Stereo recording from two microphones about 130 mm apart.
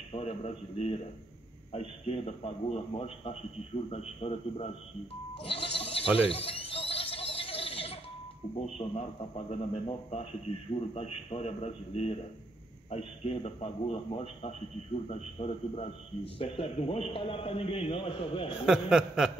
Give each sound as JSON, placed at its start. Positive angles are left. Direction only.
{"t": 0.1, "sound": "a man's voice", "side_deg": 50}
{"t": 5.4, "sound": "bleat", "side_deg": 45}
{"t": 9.5, "sound": "a man's voice", "side_deg": 50}
{"t": 18.5, "sound": "speech", "side_deg": -5}